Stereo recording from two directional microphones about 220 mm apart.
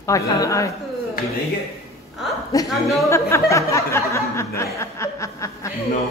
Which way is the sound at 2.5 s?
15° left (ahead or behind).